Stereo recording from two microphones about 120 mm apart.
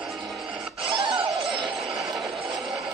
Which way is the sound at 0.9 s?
45° right (ahead or behind).